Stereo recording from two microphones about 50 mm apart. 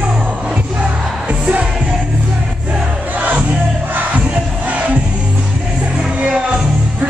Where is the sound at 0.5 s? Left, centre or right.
Right.